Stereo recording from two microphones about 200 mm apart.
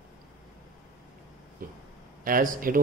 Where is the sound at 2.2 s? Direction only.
45° right (ahead or behind).